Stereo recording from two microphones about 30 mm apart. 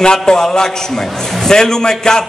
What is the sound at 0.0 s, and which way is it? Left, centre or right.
A man's voice, left.